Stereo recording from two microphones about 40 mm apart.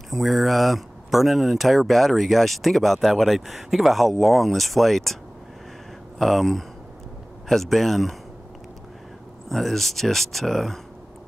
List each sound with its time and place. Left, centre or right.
0.1 s speech: centre
6.1 s speech: centre
9.5 s speech: centre